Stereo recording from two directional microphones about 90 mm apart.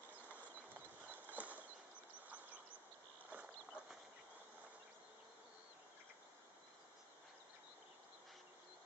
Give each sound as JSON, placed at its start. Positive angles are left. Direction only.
{"t": 1.1, "sound": "horse", "side_deg": -15}
{"t": 2.2, "sound": "a sound", "side_deg": -15}
{"t": 3.3, "sound": "horse", "side_deg": -15}